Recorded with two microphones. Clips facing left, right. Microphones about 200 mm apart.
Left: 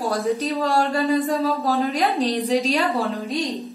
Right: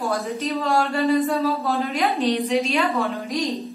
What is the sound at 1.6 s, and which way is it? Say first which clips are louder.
A woman's voice: left 2 dB; 40° left (ahead or behind).